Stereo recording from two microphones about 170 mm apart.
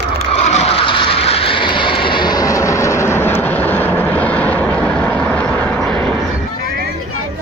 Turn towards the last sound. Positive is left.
turn(degrees=10)  # may be behind; listen again after turning